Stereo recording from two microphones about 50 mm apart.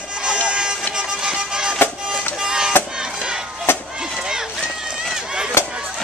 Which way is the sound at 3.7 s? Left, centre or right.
Left.